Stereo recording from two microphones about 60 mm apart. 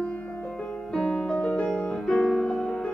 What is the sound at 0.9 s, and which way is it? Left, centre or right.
Music, centre.